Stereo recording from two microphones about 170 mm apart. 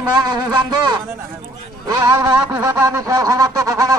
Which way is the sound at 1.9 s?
25° right (ahead or behind).